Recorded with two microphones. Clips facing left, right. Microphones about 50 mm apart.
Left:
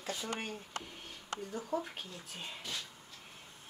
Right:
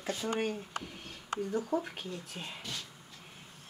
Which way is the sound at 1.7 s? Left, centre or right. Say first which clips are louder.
Right 2 dB; right.